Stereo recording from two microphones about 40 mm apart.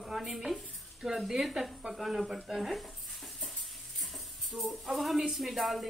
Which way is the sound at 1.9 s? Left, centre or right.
Centre.